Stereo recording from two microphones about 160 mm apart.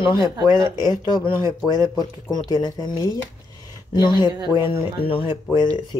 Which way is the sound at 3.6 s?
30° left (ahead or behind).